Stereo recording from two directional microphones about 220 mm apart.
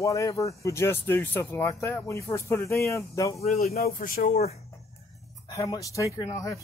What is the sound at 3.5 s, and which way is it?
Speech, 45° left (ahead or behind).